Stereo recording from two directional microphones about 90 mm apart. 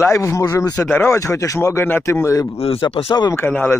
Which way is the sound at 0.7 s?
15° left (ahead or behind).